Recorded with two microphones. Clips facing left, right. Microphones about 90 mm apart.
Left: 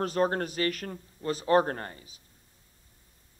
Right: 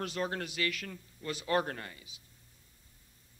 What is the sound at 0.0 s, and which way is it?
A man's voice, 40° left (ahead or behind).